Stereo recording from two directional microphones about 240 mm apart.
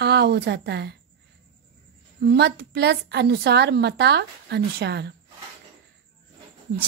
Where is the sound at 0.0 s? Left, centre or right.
Right.